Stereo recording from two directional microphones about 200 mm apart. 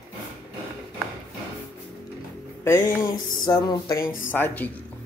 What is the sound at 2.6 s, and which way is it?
Speech, 15° left (ahead or behind).